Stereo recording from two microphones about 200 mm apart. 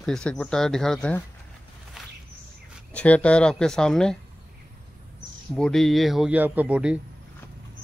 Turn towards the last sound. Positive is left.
turn(degrees=-5)  # may be behind; listen again after turning